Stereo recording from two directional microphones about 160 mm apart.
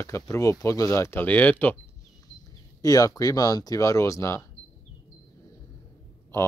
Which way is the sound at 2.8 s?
20° left (ahead or behind).